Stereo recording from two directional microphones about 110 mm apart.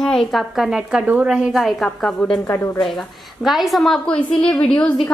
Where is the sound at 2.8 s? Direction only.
Centre (ahead or behind).